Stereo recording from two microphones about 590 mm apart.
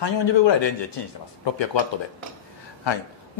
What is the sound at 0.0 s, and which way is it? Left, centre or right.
A man's voice, left.